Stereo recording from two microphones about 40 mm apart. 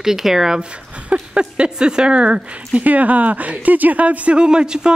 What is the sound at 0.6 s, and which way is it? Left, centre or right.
Speech, right.